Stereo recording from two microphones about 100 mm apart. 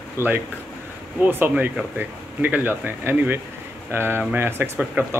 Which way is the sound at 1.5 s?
5° right (ahead or behind).